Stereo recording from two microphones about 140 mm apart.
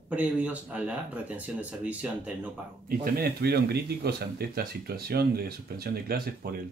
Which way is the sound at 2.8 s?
90° right.